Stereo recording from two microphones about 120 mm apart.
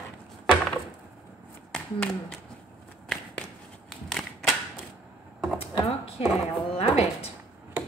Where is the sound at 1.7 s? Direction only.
5° left (ahead or behind).